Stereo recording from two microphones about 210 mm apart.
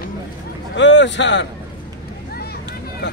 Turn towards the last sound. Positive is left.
turn(degrees=55)  # may be behind; listen again after turning